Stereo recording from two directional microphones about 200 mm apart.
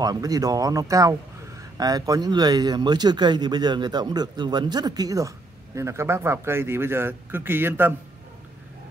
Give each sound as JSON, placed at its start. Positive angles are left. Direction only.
{"t": 0.0, "sound": "speech", "side_deg": -20}